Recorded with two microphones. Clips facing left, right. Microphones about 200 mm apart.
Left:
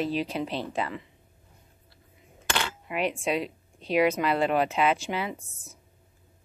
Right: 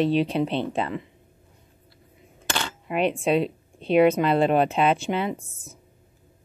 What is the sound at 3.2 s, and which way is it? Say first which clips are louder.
Speech: right 6 dB; 25° right (ahead or behind).